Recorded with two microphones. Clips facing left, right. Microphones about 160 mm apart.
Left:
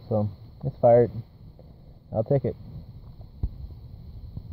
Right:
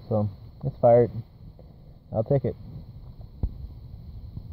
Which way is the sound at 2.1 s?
50° left (ahead or behind).